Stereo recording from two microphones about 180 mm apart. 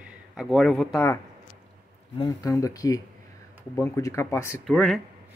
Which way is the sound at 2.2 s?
20° left (ahead or behind).